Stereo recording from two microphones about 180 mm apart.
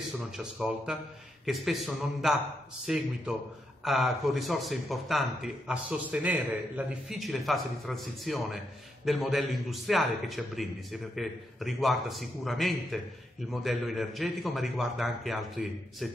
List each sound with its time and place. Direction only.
0.3 s a man's voice: centre (ahead or behind)